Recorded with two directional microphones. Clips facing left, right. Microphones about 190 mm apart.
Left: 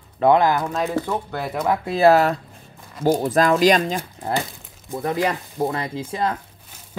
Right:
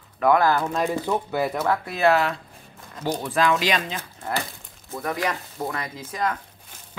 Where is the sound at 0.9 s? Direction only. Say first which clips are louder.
Left 1 dB; 10° right (ahead or behind).